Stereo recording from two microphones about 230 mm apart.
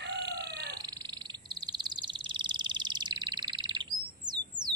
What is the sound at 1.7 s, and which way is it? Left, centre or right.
Bird, centre.